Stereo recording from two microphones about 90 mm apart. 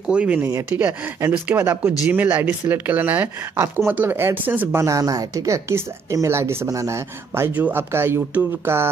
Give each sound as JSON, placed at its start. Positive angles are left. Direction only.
{"t": 0.0, "sound": "speech", "side_deg": -10}
{"t": 0.5, "sound": "speech", "side_deg": -35}
{"t": 4.8, "sound": "speech", "side_deg": -40}
{"t": 7.5, "sound": "speech", "side_deg": -20}